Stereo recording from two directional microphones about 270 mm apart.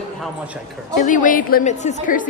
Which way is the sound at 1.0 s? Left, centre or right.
Left.